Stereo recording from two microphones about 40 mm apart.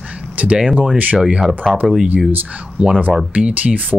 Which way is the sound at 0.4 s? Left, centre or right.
Right.